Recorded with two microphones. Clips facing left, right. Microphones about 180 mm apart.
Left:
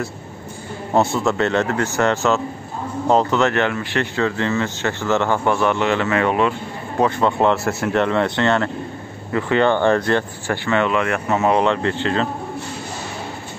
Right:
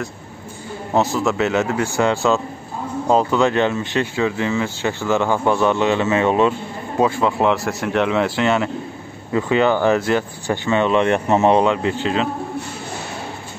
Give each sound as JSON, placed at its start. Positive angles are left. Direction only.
{"t": 0.9, "sound": "speech", "side_deg": 0}
{"t": 7.0, "sound": "speech", "side_deg": -5}
{"t": 11.6, "sound": "speech", "side_deg": -10}